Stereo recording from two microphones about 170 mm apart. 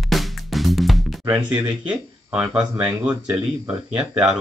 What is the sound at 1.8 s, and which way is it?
Speech, 5° right (ahead or behind).